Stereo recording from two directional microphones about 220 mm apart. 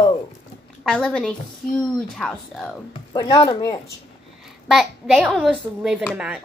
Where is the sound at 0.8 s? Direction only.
5° left (ahead or behind).